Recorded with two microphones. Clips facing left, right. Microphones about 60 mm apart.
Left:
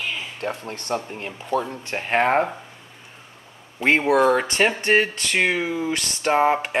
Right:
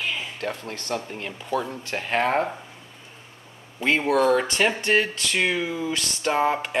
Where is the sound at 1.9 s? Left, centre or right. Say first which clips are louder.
Left 3 dB; left.